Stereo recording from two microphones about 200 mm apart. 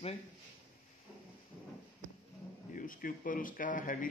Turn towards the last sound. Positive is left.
turn(degrees=40)  # may be behind; listen again after turning